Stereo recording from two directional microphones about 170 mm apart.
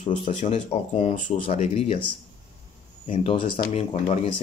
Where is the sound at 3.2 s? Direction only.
30° left (ahead or behind).